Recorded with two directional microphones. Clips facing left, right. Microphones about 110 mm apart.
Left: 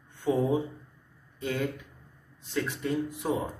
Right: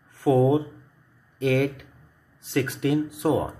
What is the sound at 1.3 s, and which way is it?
Speech, 75° right (ahead or behind).